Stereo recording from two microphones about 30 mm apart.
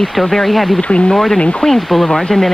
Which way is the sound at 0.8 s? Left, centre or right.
Left.